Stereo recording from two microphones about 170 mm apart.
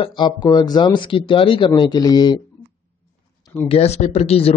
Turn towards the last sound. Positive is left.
turn(degrees=35)  # may be behind; listen again after turning